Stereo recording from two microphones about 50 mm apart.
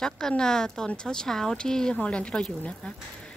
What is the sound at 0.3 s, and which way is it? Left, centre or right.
Speech, centre.